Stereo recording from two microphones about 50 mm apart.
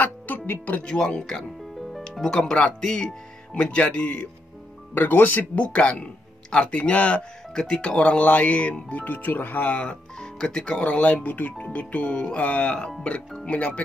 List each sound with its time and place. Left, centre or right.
0.5 s speech: left
0.8 s speech: centre
1.8 s music: centre
2.1 s speech: centre; by 4.3 s left
4.9 s speech: left
5.7 s speech: left
10.1 s speech: centre
10.8 s speech: left